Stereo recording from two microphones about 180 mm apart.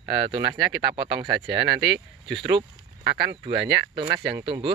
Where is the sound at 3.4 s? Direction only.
25° right (ahead or behind).